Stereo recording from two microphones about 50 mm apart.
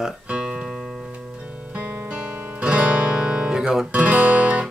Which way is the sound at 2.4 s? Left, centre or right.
Right.